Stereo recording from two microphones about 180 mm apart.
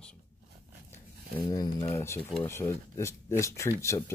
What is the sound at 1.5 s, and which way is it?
Speech, 25° left (ahead or behind).